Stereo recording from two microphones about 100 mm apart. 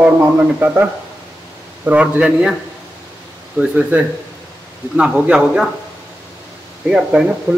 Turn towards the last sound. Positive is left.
turn(degrees=-20)  # may be behind; listen again after turning